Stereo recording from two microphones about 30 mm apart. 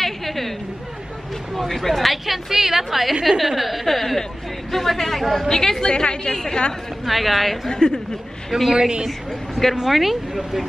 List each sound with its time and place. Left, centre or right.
0.0 s chatter: centre
1.5 s a woman's voice: centre
5.5 s a woman's voice: centre
5.9 s a woman's voice: left
7.1 s a woman's voice: centre
7.7 s a woman's voice: left
8.5 s a woman's voice: centre
9.8 s speech: centre